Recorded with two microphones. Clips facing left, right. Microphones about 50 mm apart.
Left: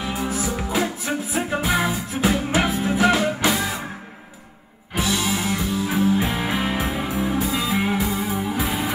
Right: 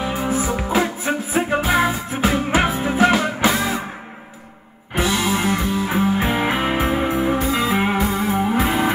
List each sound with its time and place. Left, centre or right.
0.0 s music: right
4.9 s music: centre
5.4 s music: right
8.0 s music: centre
8.3 s music: right
8.5 s music: centre